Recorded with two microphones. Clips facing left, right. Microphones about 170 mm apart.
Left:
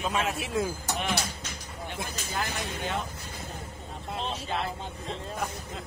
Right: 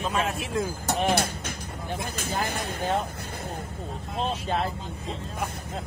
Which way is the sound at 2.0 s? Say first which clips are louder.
Right 5 dB; 55° right (ahead or behind).